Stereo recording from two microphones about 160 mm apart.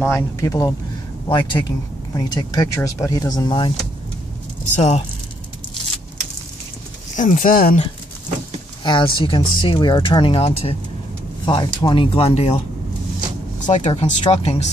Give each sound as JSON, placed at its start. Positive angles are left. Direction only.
{"t": 0.1, "sound": "speech", "side_deg": 20}
{"t": 4.7, "sound": "speech", "side_deg": 45}
{"t": 7.2, "sound": "speech", "side_deg": 55}
{"t": 8.8, "sound": "speech", "side_deg": 30}
{"t": 13.7, "sound": "speech", "side_deg": 45}